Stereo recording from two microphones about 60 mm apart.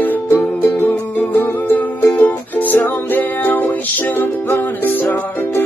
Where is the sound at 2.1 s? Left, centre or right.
Left.